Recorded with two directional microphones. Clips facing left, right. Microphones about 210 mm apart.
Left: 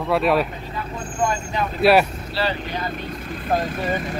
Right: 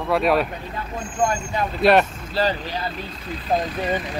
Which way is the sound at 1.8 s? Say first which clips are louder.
Left 1 dB; 5° left (ahead or behind).